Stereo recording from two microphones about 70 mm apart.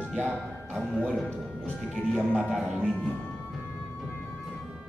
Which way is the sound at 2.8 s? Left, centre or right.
Centre.